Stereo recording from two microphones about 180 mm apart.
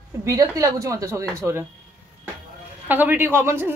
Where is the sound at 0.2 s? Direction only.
20° right (ahead or behind).